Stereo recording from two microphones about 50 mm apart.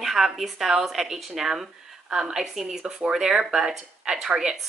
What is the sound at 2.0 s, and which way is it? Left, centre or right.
Speech, centre.